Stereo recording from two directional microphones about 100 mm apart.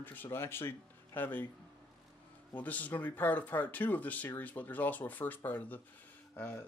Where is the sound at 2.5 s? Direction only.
15° left (ahead or behind).